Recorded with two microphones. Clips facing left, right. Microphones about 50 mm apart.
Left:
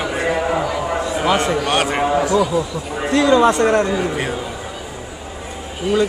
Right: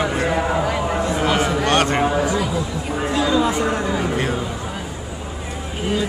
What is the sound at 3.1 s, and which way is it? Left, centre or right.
Speech, left.